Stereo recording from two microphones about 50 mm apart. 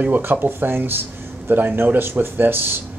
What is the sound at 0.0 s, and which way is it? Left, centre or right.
Speech, right.